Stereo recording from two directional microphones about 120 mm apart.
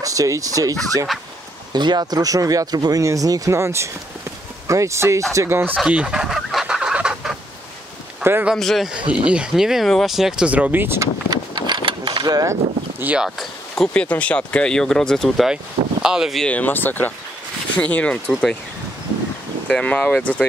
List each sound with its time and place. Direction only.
0.0 s speech: 30° right (ahead or behind)
5.8 s chicken: 10° right (ahead or behind)
8.2 s speech: 20° right (ahead or behind)
8.5 s speech: centre (ahead or behind); by 11.1 s 20° right (ahead or behind)
11.2 s a sound: 40° right (ahead or behind)
13.0 s speech: 10° right (ahead or behind)
13.4 s speech: 5° left (ahead or behind)
16.4 s speech: 15° left (ahead or behind)
19.7 s speech: 10° left (ahead or behind)